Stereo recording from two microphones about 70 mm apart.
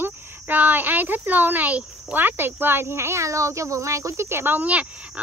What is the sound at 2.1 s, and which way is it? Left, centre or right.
Speech, right.